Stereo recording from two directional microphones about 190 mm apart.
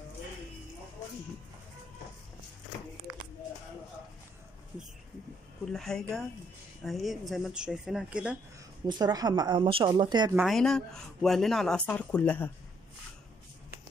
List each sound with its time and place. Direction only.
5.7 s speech: 5° left (ahead or behind)
8.8 s speech: 20° right (ahead or behind)
10.3 s speech: centre (ahead or behind)